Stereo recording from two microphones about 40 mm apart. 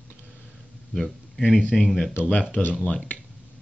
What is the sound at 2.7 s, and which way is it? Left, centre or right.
Speech, left.